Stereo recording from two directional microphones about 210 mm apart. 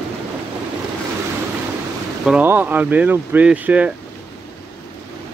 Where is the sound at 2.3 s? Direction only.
10° right (ahead or behind).